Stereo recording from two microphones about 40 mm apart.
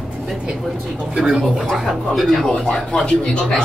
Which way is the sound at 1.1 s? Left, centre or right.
Centre.